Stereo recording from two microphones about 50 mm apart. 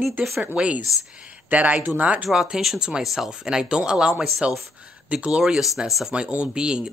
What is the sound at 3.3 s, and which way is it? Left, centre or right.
Speech, centre.